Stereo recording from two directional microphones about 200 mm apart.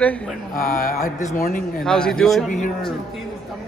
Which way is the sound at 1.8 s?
5° left (ahead or behind).